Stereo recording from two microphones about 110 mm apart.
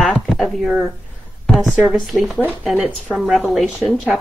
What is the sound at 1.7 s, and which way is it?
Speech, 5° right (ahead or behind).